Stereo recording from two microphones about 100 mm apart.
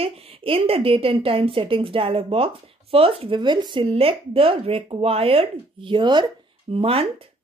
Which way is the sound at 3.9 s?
70° right (ahead or behind).